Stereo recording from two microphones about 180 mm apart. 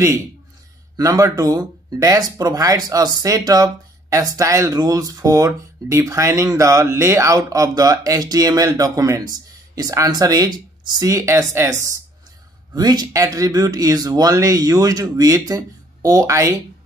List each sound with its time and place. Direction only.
0.9 s speech: 20° right (ahead or behind)